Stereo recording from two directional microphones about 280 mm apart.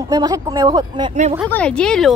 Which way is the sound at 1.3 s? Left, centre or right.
Centre.